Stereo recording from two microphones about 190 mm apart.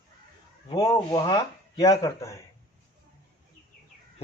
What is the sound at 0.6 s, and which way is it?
Speech, 30° left (ahead or behind).